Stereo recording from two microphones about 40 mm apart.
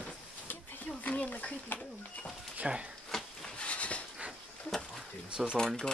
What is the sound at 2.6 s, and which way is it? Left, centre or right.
Speech, right.